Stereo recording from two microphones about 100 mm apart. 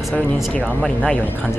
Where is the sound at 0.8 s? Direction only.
5° left (ahead or behind).